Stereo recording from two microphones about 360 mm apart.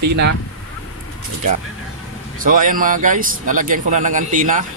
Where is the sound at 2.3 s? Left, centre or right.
Right.